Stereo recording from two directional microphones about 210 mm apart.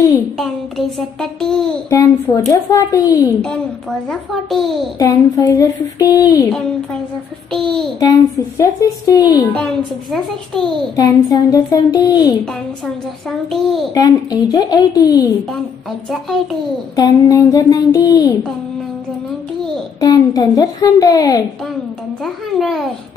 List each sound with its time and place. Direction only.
0.4 s a child's voice: centre (ahead or behind)
1.9 s speech: 15° left (ahead or behind)
4.1 s a child's voice: centre (ahead or behind)
4.9 s speech: 15° left (ahead or behind)
7.5 s a child's voice: centre (ahead or behind)
8.0 s speech: 15° left (ahead or behind)
10.1 s a child's voice: centre (ahead or behind)
11.0 s speech: 15° left (ahead or behind)
13.9 s speech: 15° left (ahead or behind)
16.9 s speech: 15° left (ahead or behind)
20.0 s speech: 15° left (ahead or behind)
22.2 s a child's voice: centre (ahead or behind)